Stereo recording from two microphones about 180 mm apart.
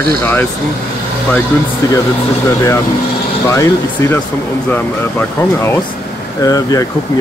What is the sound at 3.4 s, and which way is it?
Speech, 15° left (ahead or behind).